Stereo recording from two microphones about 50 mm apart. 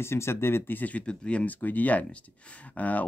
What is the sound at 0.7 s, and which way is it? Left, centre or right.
Speech, left.